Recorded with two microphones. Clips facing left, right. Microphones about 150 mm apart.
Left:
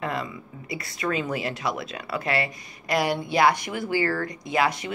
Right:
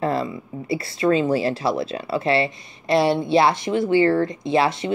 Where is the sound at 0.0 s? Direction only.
30° right (ahead or behind).